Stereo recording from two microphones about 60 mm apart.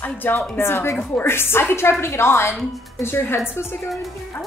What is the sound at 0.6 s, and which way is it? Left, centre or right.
A woman's voice, left.